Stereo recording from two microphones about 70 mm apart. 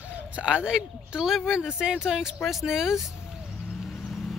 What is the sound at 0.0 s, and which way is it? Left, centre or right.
Speech, centre.